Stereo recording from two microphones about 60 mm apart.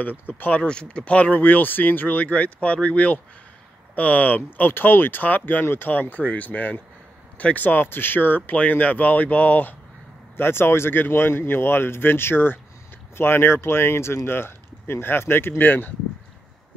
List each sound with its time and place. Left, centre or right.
0.0 s speech: left
0.6 s speech: centre
10.3 s speech: left